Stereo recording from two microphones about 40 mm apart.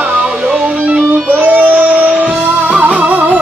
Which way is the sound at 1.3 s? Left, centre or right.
Right.